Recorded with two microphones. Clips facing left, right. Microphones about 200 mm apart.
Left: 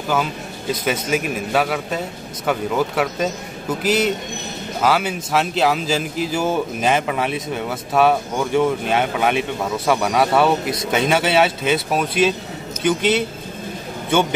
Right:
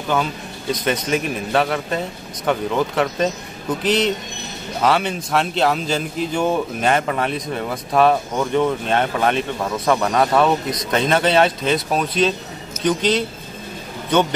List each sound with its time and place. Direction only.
0.1 s a man's voice: 5° left (ahead or behind)